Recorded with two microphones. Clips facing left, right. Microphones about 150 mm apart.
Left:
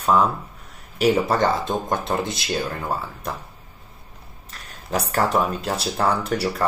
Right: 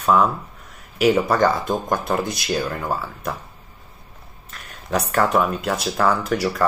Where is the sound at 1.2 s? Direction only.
25° left (ahead or behind).